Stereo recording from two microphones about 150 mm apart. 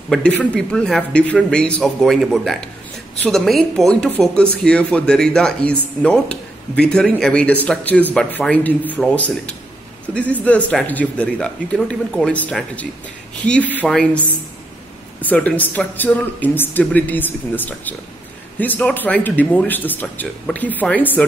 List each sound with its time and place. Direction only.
0.1 s speech: 10° left (ahead or behind)